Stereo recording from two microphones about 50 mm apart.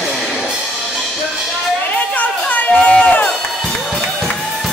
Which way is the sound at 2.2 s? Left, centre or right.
Left.